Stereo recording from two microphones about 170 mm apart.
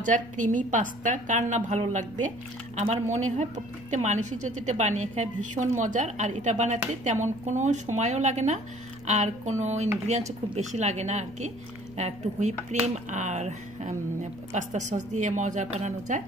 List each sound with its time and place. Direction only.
0.0 s a woman's voice: 50° right (ahead or behind)